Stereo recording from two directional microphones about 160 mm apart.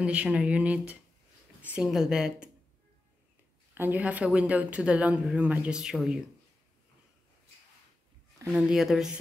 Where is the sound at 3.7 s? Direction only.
10° right (ahead or behind).